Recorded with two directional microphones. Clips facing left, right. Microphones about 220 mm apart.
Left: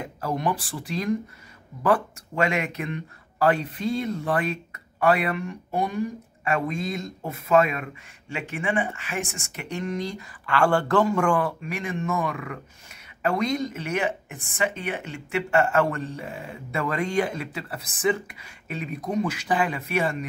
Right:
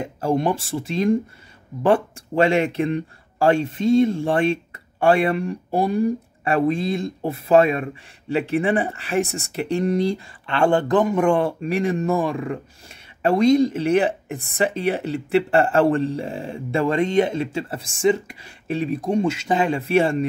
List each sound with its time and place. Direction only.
0.0 s speech: 30° right (ahead or behind)